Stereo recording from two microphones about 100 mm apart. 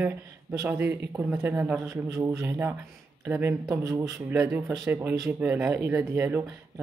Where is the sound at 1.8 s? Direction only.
30° right (ahead or behind).